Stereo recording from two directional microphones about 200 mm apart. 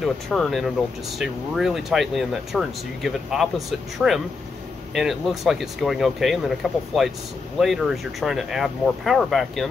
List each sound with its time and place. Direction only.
0.0 s speech: centre (ahead or behind)